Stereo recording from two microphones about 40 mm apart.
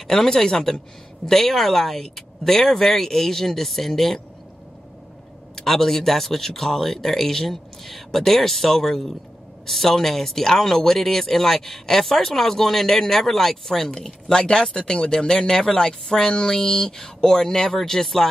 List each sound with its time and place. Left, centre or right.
0.0 s speech: centre
5.6 s speech: centre